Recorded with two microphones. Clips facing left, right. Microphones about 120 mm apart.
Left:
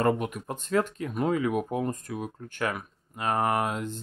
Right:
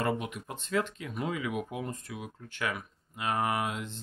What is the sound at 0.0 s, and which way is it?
Speech, 45° left (ahead or behind).